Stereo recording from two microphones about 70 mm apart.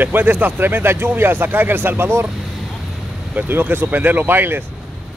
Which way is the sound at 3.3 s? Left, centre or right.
Right.